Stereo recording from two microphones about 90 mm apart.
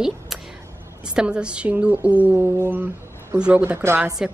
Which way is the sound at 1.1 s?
10° right (ahead or behind).